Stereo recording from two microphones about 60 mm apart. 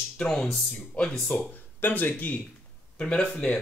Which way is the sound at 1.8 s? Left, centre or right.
Left.